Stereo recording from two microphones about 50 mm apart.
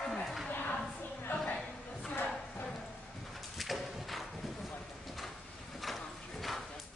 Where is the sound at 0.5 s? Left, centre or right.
Left.